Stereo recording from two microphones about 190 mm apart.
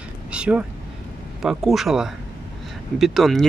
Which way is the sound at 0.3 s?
5° right (ahead or behind).